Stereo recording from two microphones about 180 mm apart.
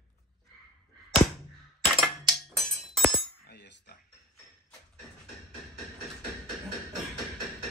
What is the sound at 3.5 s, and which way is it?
Cutlery, 65° left (ahead or behind).